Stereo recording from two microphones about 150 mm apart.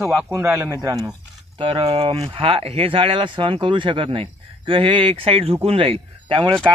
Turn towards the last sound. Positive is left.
turn(degrees=-35)  # may be behind; listen again after turning